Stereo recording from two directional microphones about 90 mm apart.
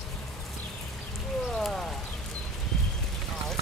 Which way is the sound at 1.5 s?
5° left (ahead or behind).